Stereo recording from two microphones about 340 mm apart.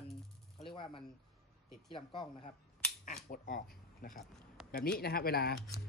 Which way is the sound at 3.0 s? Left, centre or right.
Left.